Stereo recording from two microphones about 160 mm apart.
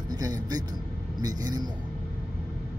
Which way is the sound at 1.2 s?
25° right (ahead or behind).